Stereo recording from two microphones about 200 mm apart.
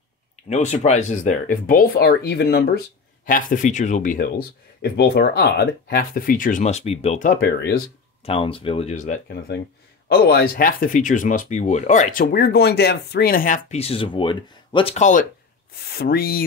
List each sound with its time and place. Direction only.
0.5 s speech: 35° left (ahead or behind); by 7.8 s 50° left (ahead or behind)
8.2 s speech: 30° left (ahead or behind)
10.0 s speech: 50° left (ahead or behind)
16.0 s speech: 50° left (ahead or behind)